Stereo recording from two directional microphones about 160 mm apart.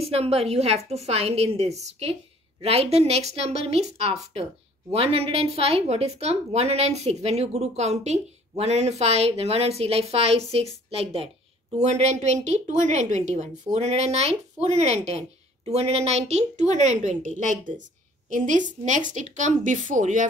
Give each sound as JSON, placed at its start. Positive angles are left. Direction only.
{"t": 0.0, "sound": "a woman's voice", "side_deg": -40}